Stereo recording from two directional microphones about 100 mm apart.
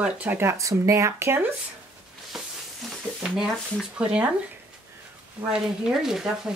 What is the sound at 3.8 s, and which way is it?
Speech, 10° right (ahead or behind).